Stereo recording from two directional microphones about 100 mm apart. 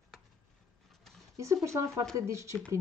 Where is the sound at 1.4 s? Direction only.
30° right (ahead or behind).